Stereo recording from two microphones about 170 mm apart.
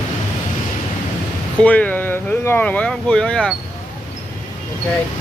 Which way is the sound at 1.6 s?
10° left (ahead or behind).